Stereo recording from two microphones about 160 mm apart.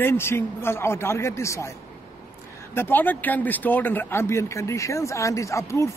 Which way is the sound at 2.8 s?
10° left (ahead or behind).